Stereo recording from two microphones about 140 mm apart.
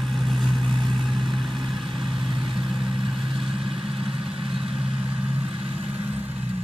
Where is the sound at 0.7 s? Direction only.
30° right (ahead or behind).